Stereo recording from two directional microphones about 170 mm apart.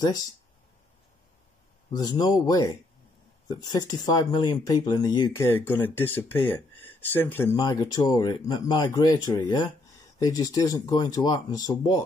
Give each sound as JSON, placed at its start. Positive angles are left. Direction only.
{"t": 0.0, "sound": "speech", "side_deg": 25}
{"t": 1.9, "sound": "speech", "side_deg": 25}
{"t": 7.5, "sound": "speech", "side_deg": 25}